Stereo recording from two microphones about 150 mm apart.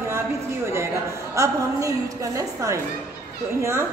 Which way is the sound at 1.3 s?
20° right (ahead or behind).